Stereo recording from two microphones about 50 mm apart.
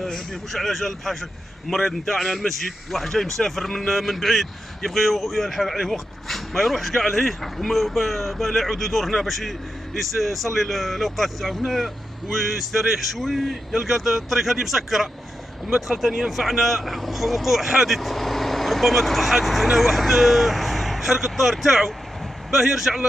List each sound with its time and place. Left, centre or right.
0.0 s a man's voice: centre